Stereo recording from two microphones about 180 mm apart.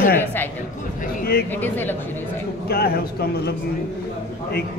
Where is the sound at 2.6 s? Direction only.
60° left (ahead or behind).